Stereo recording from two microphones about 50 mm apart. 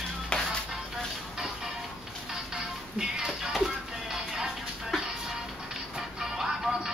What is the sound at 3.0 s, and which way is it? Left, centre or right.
Music, centre.